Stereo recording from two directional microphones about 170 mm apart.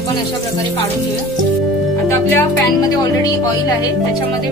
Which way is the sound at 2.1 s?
20° left (ahead or behind).